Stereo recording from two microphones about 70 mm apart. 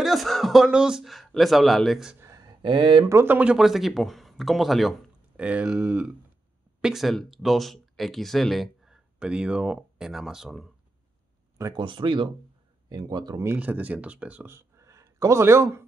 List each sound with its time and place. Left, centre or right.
0.0 s speech: centre
2.2 s a sound: right
3.3 s speech: right
3.5 s speech: centre
5.4 s speech: centre
6.8 s speech: centre
12.9 s speech: right
13.6 s speech: right
14.5 s a sound: right